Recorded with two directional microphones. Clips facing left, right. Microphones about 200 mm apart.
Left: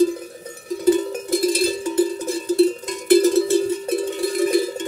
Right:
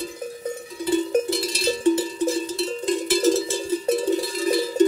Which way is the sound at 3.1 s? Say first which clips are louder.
Left 9 dB; 60° left (ahead or behind).